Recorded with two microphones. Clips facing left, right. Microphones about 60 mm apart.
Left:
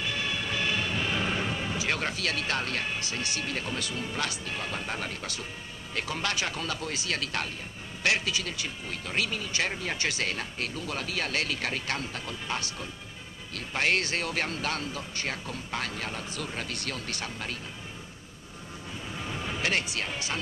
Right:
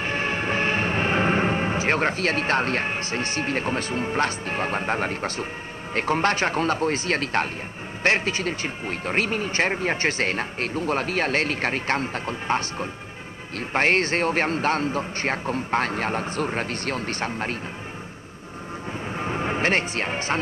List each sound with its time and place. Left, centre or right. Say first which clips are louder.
0.0 s music: right 7 dB; right
5.9 s speech: right 9 dB; right
19.1 s music: right 9 dB; right